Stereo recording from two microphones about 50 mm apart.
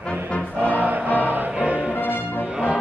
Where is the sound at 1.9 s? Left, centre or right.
Left.